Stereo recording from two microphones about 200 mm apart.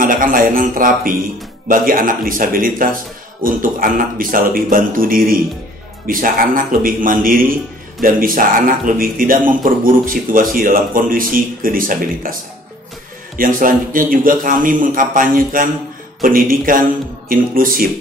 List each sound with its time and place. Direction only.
0.0 s speech: 45° right (ahead or behind)
13.4 s speech: 45° right (ahead or behind)